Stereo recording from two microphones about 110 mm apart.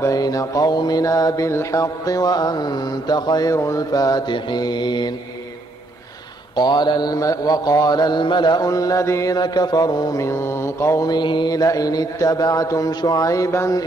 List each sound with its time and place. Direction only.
0.0 s mantra: 35° left (ahead or behind)
6.5 s mantra: 40° left (ahead or behind)
10.2 s mantra: 25° left (ahead or behind)